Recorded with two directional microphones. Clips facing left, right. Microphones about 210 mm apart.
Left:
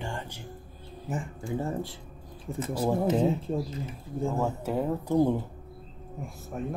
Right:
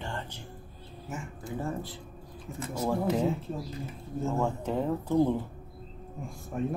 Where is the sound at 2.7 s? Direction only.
30° left (ahead or behind).